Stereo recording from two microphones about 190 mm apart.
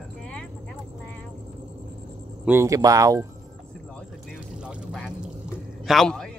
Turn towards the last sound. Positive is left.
turn(degrees=5)  # may be behind; listen again after turning